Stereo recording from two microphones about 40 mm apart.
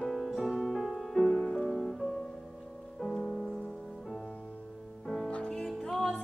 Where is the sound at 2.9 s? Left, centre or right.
Centre.